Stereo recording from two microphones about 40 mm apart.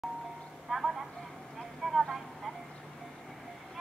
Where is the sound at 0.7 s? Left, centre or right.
Centre.